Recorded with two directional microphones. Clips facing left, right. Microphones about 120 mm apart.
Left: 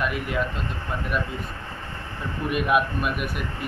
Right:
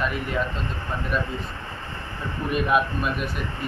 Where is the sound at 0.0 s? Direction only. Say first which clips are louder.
Even; 10° left (ahead or behind).